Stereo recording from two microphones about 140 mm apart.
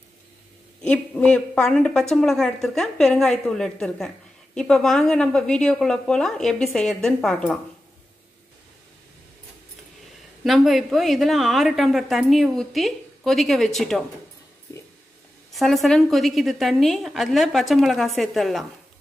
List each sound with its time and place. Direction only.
0.8 s a woman's voice: 10° left (ahead or behind)
10.4 s a woman's voice: centre (ahead or behind)
14.7 s a sound: 20° left (ahead or behind)
15.5 s a woman's voice: centre (ahead or behind)